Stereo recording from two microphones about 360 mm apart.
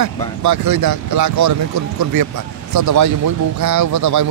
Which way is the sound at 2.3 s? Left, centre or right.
Right.